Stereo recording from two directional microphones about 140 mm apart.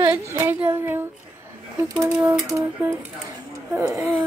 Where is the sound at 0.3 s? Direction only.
15° right (ahead or behind).